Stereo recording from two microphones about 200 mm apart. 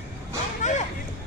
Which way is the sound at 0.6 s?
35° left (ahead or behind).